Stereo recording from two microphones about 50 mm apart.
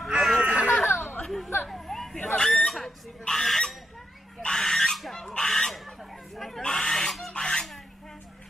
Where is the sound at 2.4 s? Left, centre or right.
Centre.